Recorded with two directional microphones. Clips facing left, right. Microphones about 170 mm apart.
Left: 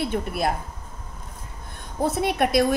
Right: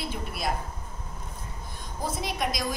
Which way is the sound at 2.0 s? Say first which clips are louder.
Left 8 dB; 65° left (ahead or behind).